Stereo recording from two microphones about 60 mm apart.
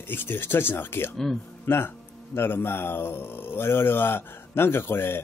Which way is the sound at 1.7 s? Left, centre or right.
Left.